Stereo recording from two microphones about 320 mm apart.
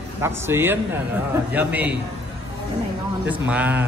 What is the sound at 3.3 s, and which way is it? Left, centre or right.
Speech, centre.